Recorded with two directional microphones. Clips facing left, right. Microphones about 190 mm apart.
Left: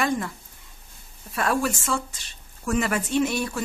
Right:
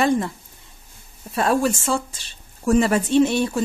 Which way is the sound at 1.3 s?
25° right (ahead or behind).